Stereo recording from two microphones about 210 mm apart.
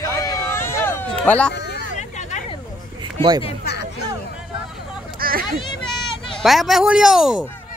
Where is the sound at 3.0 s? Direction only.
20° right (ahead or behind).